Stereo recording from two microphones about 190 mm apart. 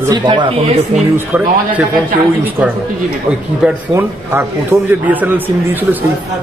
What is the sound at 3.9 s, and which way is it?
Speech, 15° right (ahead or behind).